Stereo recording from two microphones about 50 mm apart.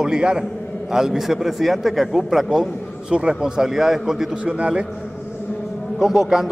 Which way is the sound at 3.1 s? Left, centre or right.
Centre.